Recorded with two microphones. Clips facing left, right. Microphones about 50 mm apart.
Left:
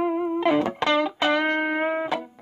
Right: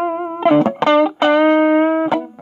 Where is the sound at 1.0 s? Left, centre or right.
Right.